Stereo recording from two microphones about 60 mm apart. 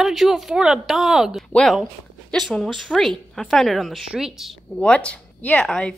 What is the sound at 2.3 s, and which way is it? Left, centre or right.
Speech, centre.